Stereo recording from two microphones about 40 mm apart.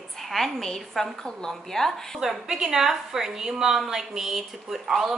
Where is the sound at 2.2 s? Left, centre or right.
Centre.